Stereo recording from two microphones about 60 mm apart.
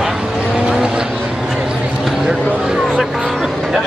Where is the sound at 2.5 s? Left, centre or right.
Centre.